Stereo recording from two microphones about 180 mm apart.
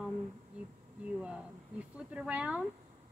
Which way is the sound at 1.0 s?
5° right (ahead or behind).